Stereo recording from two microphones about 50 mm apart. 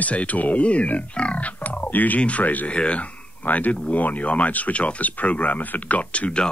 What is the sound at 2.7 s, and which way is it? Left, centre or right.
Speech, left.